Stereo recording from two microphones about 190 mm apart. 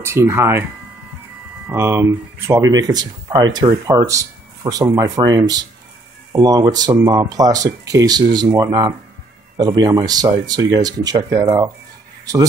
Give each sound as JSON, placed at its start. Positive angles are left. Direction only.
{"t": 0.0, "sound": "speech", "side_deg": -15}
{"t": 1.7, "sound": "speech", "side_deg": -15}